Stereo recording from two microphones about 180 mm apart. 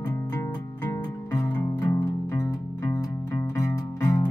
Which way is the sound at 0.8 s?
15° left (ahead or behind).